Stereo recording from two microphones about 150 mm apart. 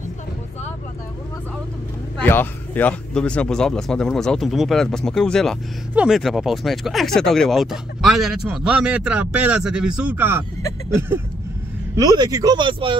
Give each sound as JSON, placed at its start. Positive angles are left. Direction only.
{"t": 2.1, "sound": "speech", "side_deg": 10}
{"t": 11.9, "sound": "speech", "side_deg": -25}